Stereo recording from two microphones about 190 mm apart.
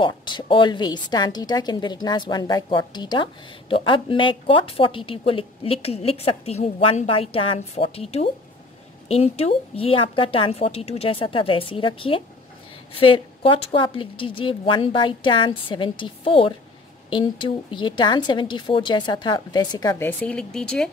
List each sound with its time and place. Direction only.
0.0 s a woman's voice: 25° left (ahead or behind); by 20.9 s 5° left (ahead or behind)